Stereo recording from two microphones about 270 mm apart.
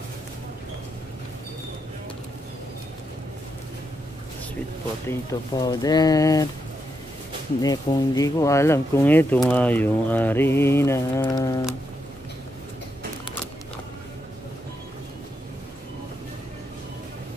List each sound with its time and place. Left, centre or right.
5.0 s speech: centre
7.6 s speech: centre